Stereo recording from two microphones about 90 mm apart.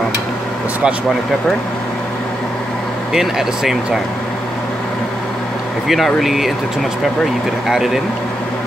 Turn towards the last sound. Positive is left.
turn(degrees=-5)  # may be behind; listen again after turning